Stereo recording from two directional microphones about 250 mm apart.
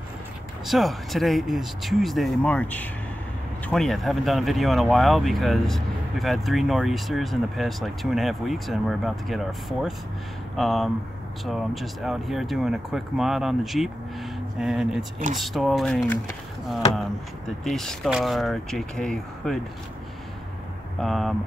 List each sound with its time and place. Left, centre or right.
0.7 s speech: centre
17.6 s speech: centre
21.0 s speech: centre